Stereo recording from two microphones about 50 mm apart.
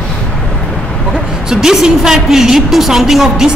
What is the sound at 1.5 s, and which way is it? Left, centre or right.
A woman's voice, centre.